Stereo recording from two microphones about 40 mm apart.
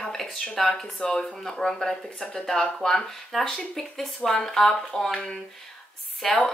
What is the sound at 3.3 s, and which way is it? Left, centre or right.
Speech, centre.